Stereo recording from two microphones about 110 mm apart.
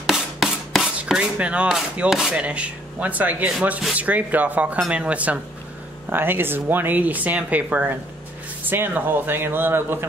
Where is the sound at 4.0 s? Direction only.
15° right (ahead or behind).